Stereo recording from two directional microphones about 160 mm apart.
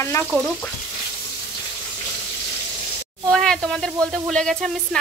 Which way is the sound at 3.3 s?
5° left (ahead or behind).